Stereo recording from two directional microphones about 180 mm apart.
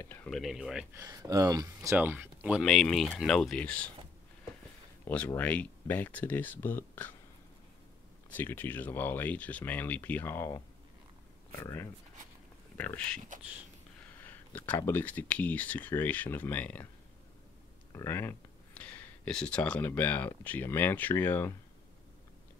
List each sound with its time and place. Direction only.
0.0 s speech: 10° left (ahead or behind)
1.0 s speech: 20° right (ahead or behind); by 3.9 s 5° left (ahead or behind)
5.0 s speech: 10° left (ahead or behind)
8.3 s speech: 10° left (ahead or behind)
11.6 s speech: 15° left (ahead or behind)
14.2 s speech: 10° left (ahead or behind)
17.9 s speech: 15° left (ahead or behind)